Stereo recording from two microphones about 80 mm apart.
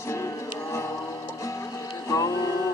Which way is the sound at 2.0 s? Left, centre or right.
Left.